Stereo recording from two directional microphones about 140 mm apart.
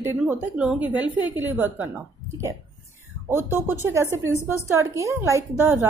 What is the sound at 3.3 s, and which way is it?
A woman's voice, 15° right (ahead or behind).